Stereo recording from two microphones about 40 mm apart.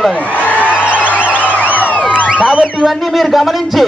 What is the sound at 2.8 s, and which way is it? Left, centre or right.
A man's voice, centre.